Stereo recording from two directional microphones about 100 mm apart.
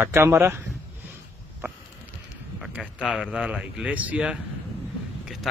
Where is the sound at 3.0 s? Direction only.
5° right (ahead or behind).